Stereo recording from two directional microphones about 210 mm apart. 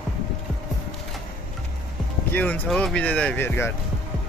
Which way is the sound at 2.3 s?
5° left (ahead or behind).